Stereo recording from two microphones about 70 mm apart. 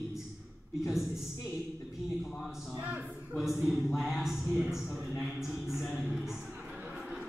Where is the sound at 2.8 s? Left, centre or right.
Right.